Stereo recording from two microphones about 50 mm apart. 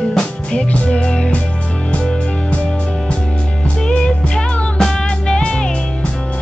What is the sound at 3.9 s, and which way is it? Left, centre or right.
Music, centre.